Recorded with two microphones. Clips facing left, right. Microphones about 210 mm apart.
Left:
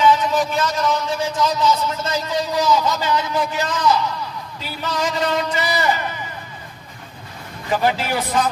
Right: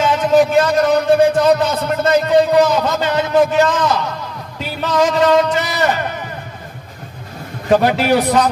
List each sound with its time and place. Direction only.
0.0 s a man's voice: 50° right (ahead or behind); by 6.0 s 65° right (ahead or behind)
7.7 s a man's voice: 65° right (ahead or behind)